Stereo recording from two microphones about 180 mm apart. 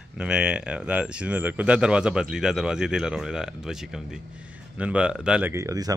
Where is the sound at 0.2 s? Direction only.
5° right (ahead or behind).